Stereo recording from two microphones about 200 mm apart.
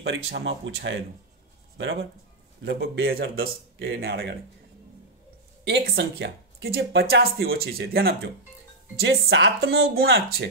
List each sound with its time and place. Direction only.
0.0 s speech: 60° right (ahead or behind)
5.7 s speech: 60° right (ahead or behind)
9.0 s speech: 65° right (ahead or behind); by 9.8 s 80° right
9.9 s speech: 50° right (ahead or behind)